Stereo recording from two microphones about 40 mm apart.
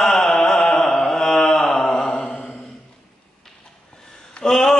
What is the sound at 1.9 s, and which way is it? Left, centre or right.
Mantra, centre.